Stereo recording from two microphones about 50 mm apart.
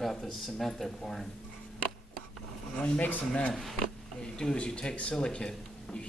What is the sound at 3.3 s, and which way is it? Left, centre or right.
Speech, centre.